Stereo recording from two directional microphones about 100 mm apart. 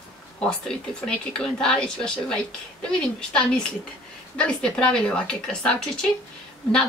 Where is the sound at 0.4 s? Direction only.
10° left (ahead or behind).